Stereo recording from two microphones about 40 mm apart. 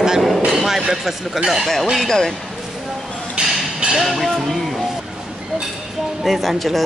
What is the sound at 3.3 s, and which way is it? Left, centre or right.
Chink, right.